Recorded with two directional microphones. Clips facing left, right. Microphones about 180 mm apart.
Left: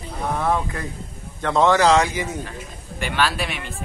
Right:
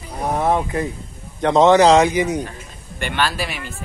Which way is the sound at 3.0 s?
Centre (ahead or behind).